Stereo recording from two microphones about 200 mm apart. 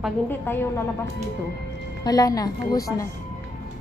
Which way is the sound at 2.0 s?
20° left (ahead or behind).